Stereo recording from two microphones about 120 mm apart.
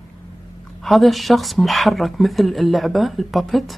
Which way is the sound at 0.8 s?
Centre (ahead or behind).